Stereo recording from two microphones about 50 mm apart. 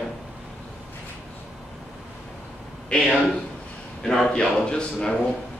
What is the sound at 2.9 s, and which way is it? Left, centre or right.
A man's voice, centre.